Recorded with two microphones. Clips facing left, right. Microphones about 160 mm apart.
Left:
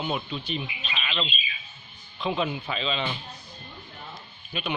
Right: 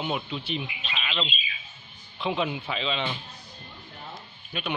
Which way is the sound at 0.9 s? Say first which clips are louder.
Even; 5° right (ahead or behind).